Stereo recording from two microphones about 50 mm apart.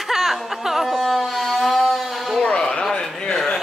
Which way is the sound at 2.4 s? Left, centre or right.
Centre.